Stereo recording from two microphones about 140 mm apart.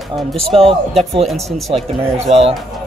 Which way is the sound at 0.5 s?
45° right (ahead or behind).